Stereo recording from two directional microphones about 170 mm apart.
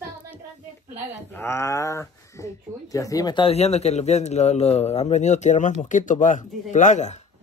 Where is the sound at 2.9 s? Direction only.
20° left (ahead or behind); by 7.2 s 45° left (ahead or behind).